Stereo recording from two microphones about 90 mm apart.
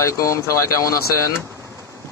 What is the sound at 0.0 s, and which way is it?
Speech, 35° left (ahead or behind).